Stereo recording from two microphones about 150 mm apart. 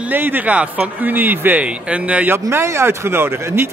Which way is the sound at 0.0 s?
10° right (ahead or behind).